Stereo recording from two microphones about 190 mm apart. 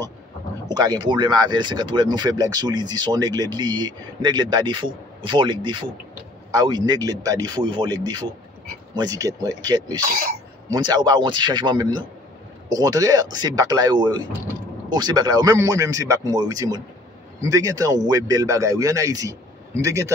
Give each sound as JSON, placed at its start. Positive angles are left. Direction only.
{"t": 0.7, "sound": "speech", "side_deg": -20}